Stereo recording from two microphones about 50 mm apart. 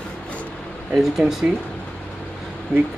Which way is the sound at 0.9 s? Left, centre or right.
Centre.